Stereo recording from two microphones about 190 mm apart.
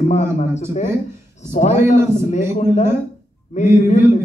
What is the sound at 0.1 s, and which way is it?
Speech, 35° left (ahead or behind).